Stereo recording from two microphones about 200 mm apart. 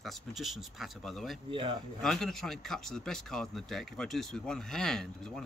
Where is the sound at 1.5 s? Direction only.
25° right (ahead or behind).